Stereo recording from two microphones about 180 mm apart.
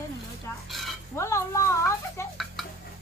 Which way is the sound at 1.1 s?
15° left (ahead or behind).